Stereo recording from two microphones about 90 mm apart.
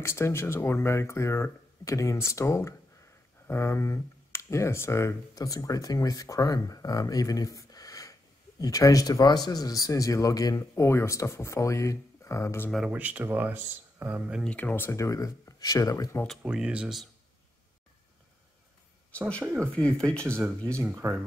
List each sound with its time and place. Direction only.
0.0 s speech: 30° left (ahead or behind)
5.3 s speech: 40° left (ahead or behind)
10.7 s speech: 30° left (ahead or behind)
12.9 s speech: 20° right (ahead or behind)
14.4 s speech: 15° left (ahead or behind); by 16.2 s 40° left (ahead or behind)
16.4 s speech: 10° right (ahead or behind)
19.6 s speech: 10° left (ahead or behind)
21.0 s speech: 30° right (ahead or behind)